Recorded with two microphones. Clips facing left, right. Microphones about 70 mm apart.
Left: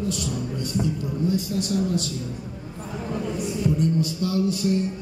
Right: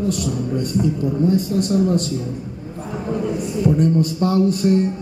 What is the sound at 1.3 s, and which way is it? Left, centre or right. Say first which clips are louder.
Speech: right 5 dB; right.